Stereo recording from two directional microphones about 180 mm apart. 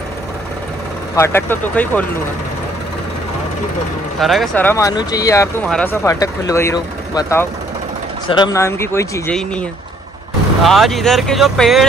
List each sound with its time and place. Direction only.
1.1 s speech: 15° left (ahead or behind)
4.2 s speech: centre (ahead or behind)
4.6 s speech: 15° left (ahead or behind)
5.7 s speech: 5° left (ahead or behind)
6.0 s speech: 20° left (ahead or behind)
10.6 s speech: centre (ahead or behind)